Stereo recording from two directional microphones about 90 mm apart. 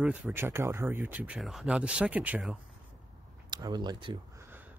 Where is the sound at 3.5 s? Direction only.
50° right (ahead or behind).